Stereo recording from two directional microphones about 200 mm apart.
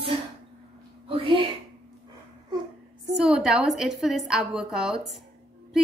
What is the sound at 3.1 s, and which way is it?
A woman's voice, 5° right (ahead or behind).